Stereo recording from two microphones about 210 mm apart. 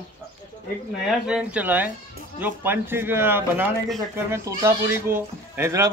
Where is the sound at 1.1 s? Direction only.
5° right (ahead or behind).